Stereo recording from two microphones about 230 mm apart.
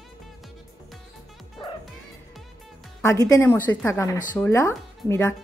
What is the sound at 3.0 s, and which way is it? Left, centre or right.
Speech, centre.